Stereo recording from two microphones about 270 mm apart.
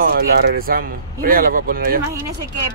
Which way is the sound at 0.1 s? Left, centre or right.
Right.